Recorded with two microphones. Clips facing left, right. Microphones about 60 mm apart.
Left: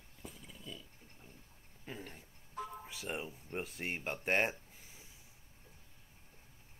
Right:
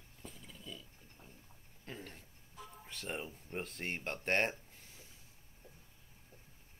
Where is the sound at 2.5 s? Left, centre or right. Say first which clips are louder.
Left 9 dB; left.